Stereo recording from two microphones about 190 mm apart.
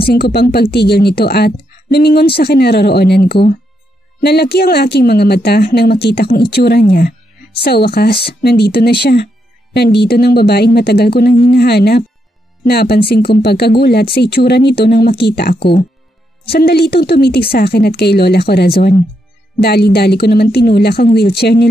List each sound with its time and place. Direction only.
0.0 s speech: 55° left (ahead or behind)